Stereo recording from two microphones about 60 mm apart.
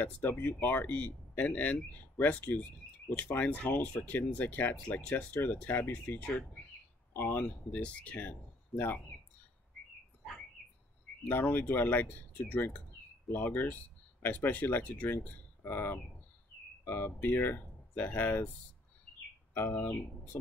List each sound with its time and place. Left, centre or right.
0.0 s speech: left
11.2 s speech: left
19.7 s speech: left